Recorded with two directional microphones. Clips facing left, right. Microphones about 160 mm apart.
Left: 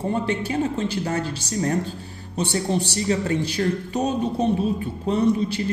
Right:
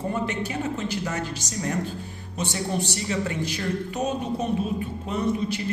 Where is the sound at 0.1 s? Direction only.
30° left (ahead or behind).